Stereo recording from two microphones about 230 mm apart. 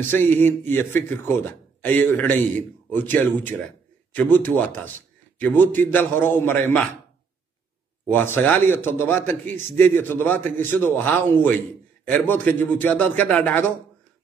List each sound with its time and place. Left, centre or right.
0.1 s a man's voice: centre
8.1 s a man's voice: centre